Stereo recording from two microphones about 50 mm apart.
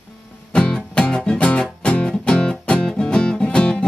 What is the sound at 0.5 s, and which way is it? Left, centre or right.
Music, centre.